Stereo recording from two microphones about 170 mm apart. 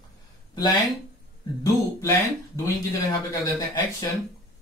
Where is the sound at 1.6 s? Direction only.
20° left (ahead or behind).